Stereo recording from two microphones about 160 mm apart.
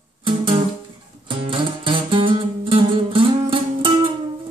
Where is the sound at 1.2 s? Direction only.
30° right (ahead or behind).